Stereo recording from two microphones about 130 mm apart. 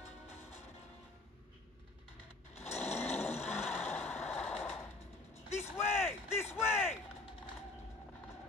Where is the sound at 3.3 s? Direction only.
60° left (ahead or behind).